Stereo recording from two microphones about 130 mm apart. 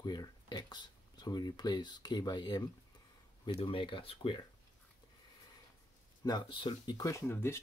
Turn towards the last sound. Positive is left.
turn(degrees=20)  # may be behind; listen again after turning